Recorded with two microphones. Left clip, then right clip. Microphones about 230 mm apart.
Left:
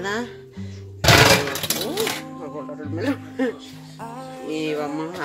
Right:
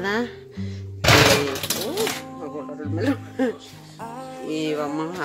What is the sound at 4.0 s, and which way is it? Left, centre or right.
Music, centre.